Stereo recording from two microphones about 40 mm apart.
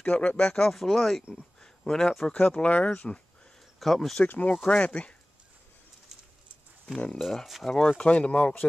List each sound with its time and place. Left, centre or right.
0.0 s speech: left
0.7 s speech: centre
1.3 s a sound: centre
2.3 s speech: left
3.8 s speech: centre
4.3 s speech: left
4.7 s speech: left
7.2 s speech: centre
7.6 s speech: centre
8.0 s speech: left